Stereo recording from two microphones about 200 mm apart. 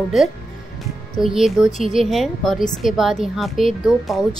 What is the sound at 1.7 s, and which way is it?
Speech, 40° left (ahead or behind).